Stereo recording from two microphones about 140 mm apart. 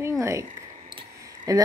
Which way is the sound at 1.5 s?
25° right (ahead or behind).